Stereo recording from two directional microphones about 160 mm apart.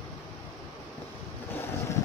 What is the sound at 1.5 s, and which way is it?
Boat, 15° left (ahead or behind).